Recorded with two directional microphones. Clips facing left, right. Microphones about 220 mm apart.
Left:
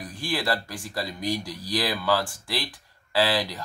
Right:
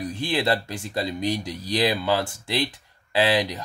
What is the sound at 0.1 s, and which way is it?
Speech, 25° right (ahead or behind).